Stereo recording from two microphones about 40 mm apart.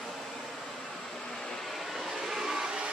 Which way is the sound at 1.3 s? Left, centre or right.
Centre.